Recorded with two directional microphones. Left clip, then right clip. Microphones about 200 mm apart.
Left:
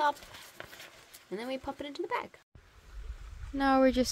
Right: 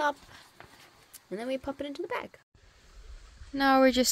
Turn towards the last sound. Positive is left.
turn(degrees=0)  # may be behind; listen again after turning